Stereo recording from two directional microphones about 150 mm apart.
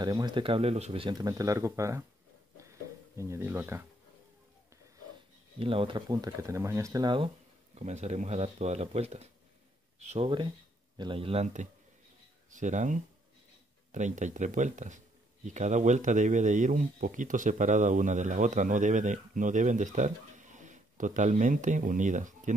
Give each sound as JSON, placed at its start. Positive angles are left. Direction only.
{"t": 0.0, "sound": "speech", "side_deg": -30}
{"t": 2.5, "sound": "a sound", "side_deg": -20}
{"t": 5.6, "sound": "speech", "side_deg": -35}
{"t": 7.7, "sound": "speech", "side_deg": -50}
{"t": 12.4, "sound": "a man's voice", "side_deg": -55}